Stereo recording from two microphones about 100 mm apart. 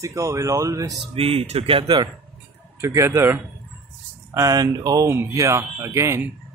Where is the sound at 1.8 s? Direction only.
50° right (ahead or behind).